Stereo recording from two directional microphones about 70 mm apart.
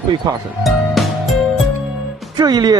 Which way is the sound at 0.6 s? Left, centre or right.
Centre.